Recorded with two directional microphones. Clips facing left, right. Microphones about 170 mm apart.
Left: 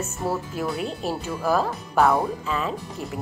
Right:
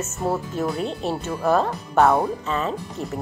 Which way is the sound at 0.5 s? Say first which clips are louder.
Right 3 dB; centre (ahead or behind).